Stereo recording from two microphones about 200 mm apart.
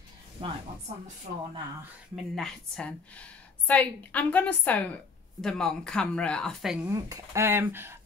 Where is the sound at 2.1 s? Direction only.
5° left (ahead or behind).